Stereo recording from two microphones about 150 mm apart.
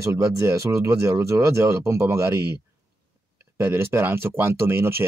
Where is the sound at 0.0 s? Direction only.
20° right (ahead or behind).